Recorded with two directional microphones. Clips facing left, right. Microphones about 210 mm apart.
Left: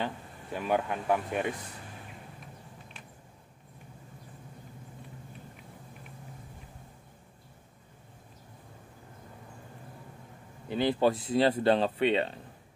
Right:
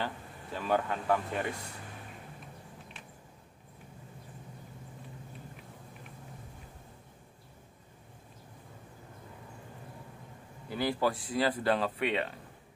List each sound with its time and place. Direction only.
0.0 s speech: 15° left (ahead or behind)
10.7 s speech: 20° left (ahead or behind)